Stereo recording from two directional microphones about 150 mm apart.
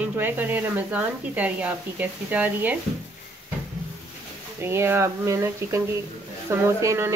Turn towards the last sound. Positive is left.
turn(degrees=-15)  # may be behind; listen again after turning